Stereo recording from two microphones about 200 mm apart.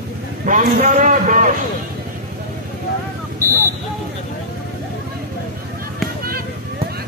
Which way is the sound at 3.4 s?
15° right (ahead or behind).